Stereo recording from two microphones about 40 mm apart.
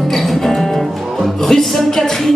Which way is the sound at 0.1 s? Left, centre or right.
Centre.